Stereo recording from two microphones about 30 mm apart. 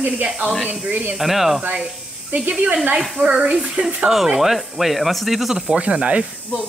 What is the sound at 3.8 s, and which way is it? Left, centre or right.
Speech, right.